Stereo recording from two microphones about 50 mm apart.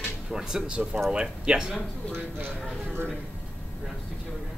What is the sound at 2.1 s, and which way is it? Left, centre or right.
Speech, right.